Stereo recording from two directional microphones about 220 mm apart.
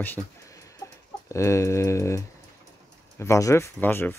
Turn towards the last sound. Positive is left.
turn(degrees=10)  # may be behind; listen again after turning